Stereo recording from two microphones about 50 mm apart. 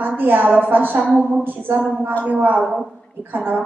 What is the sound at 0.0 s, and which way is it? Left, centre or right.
A woman's voice, right.